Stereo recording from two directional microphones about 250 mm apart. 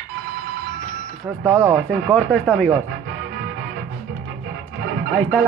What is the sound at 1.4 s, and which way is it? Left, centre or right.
Speech, centre.